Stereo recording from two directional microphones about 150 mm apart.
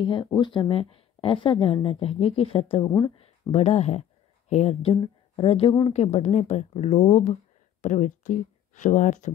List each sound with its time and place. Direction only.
0.0 s a woman's voice: 35° left (ahead or behind)
2.8 s speech: 25° left (ahead or behind)
3.5 s speech: 45° left (ahead or behind)